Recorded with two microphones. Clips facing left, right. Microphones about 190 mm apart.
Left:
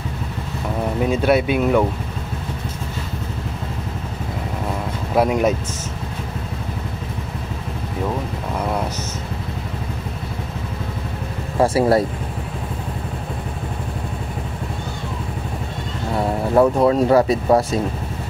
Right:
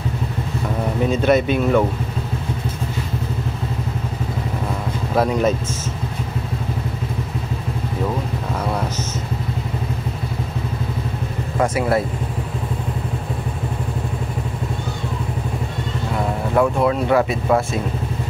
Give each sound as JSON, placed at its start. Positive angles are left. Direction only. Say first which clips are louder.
{"t": 1.1, "sound": "speech", "louder": "right 1 dB", "side_deg": 10}
{"t": 5.1, "sound": "speech", "louder": "left 1 dB", "side_deg": 10}
{"t": 11.6, "sound": "speech", "louder": "left 3 dB", "side_deg": 35}
{"t": 16.5, "sound": "speech", "louder": "left 3 dB", "side_deg": 35}